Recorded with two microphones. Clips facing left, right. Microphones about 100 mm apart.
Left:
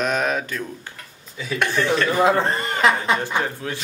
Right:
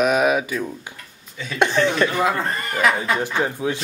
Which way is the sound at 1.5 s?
20° right (ahead or behind).